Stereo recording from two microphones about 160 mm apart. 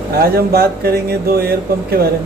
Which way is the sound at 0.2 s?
75° right (ahead or behind).